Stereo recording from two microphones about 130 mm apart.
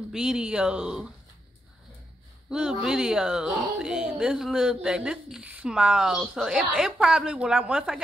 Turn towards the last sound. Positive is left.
turn(degrees=-5)  # may be behind; listen again after turning